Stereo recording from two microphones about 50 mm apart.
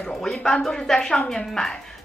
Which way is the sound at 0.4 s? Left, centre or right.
Centre.